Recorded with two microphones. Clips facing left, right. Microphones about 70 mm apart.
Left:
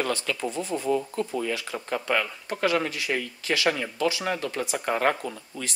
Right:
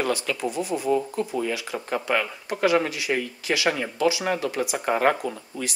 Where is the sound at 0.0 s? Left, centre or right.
Centre.